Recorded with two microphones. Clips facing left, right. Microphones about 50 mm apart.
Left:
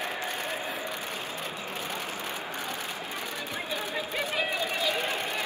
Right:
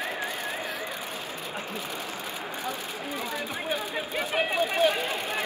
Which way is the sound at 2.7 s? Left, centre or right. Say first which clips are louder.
Right 2 dB; left.